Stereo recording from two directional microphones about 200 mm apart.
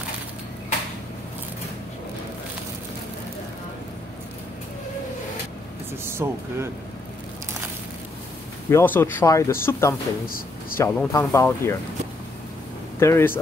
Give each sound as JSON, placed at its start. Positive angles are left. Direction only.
{"t": 6.0, "sound": "speech", "side_deg": -10}
{"t": 8.6, "sound": "speech", "side_deg": 10}
{"t": 10.2, "sound": "a sound", "side_deg": 45}
{"t": 10.8, "sound": "speech", "side_deg": 10}
{"t": 13.0, "sound": "speech", "side_deg": 15}